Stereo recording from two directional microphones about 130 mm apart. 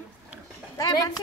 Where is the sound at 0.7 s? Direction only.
30° left (ahead or behind).